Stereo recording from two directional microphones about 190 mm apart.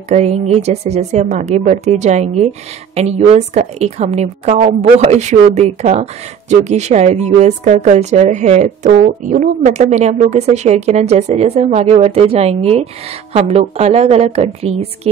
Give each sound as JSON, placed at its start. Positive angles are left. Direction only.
{"t": 0.1, "sound": "a woman's voice", "side_deg": -35}